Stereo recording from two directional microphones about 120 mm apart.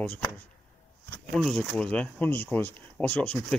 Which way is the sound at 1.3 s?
5° left (ahead or behind).